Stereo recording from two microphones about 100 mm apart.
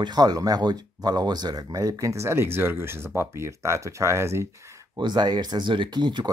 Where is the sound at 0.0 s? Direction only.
40° right (ahead or behind); by 4.5 s 25° right (ahead or behind).